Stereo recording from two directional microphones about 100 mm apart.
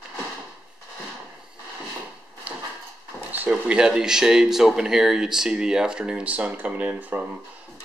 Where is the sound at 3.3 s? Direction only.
15° right (ahead or behind).